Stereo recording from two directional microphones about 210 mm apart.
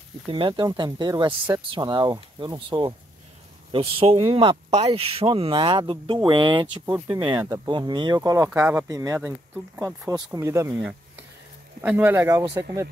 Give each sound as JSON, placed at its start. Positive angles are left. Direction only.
{"t": 0.3, "sound": "speech", "side_deg": -25}
{"t": 10.8, "sound": "insect", "side_deg": -5}
{"t": 11.8, "sound": "speech", "side_deg": -10}